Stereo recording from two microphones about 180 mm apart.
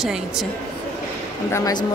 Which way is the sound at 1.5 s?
20° left (ahead or behind).